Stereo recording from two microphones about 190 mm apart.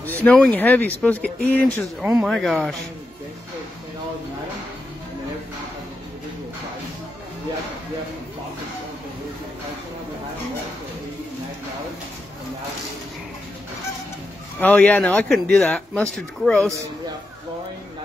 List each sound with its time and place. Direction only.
0.0 s speech: 10° left (ahead or behind)
2.0 s speech: 10° right (ahead or behind)
14.6 s speech: 10° left (ahead or behind)